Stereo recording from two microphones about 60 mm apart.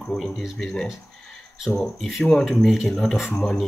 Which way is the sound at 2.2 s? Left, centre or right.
Centre.